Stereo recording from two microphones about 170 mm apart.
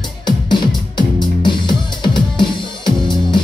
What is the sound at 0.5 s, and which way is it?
Music, 25° left (ahead or behind).